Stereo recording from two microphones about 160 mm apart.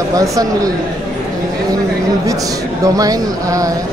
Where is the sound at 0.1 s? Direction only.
20° right (ahead or behind).